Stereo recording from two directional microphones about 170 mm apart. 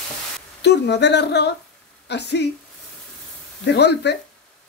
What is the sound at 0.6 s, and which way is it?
A woman's voice, 85° left.